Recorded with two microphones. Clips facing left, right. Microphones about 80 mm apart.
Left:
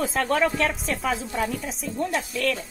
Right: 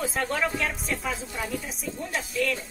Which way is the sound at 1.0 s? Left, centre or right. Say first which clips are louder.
Left 6 dB; left.